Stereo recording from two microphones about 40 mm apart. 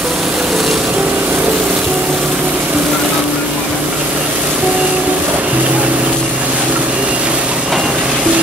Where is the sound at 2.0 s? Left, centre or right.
Right.